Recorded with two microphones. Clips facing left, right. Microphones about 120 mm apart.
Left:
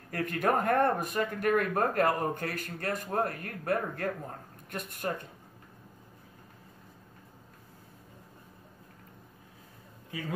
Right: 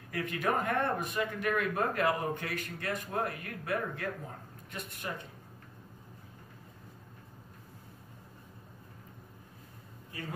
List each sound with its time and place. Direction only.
0.1 s speech: 45° left (ahead or behind)